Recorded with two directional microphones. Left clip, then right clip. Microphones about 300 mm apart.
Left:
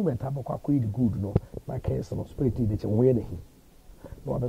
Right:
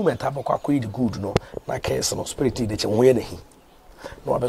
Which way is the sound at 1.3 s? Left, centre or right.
Centre.